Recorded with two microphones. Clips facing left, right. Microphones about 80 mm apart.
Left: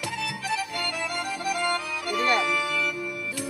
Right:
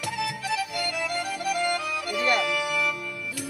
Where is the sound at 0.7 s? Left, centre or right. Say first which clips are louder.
Right 1 dB; left.